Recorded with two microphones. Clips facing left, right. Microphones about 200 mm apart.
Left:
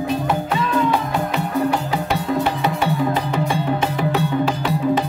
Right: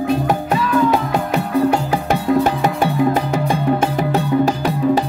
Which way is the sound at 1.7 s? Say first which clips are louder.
Right 3 dB; 45° right (ahead or behind).